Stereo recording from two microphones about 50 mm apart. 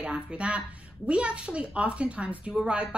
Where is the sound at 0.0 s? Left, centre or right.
Centre.